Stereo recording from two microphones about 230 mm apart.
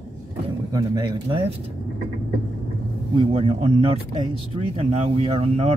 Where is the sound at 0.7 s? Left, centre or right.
Centre.